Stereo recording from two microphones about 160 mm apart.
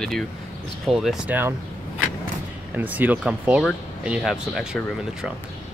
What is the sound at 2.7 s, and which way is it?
Speech, 10° right (ahead or behind).